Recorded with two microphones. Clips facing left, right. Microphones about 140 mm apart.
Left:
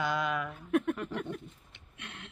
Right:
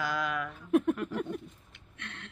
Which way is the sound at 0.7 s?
30° right (ahead or behind).